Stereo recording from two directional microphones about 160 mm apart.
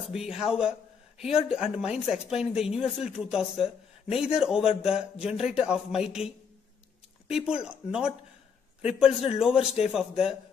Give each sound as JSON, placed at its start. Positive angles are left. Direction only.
{"t": 0.1, "sound": "speech", "side_deg": -5}